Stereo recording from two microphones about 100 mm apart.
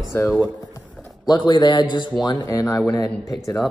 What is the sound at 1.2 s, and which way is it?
Speech, 45° left (ahead or behind).